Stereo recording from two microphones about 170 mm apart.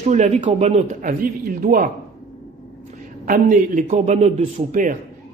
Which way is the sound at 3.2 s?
50° right (ahead or behind).